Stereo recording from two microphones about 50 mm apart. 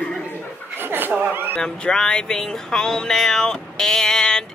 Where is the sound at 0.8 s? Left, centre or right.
Right.